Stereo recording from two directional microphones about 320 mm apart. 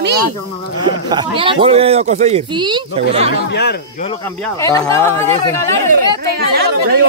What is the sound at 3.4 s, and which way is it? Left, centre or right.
Speech, left.